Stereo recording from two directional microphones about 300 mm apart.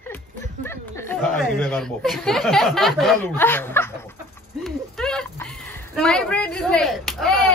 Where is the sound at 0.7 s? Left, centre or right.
Centre.